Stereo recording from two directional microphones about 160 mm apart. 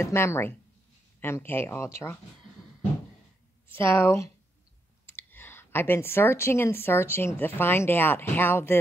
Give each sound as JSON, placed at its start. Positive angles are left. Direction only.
{"t": 0.0, "sound": "speech", "side_deg": 15}
{"t": 3.6, "sound": "speech", "side_deg": 15}